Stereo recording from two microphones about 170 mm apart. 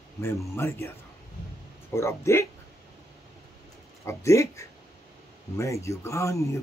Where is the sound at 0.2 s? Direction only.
15° left (ahead or behind).